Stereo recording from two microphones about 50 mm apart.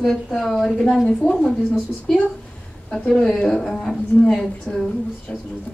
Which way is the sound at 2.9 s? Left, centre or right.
Centre.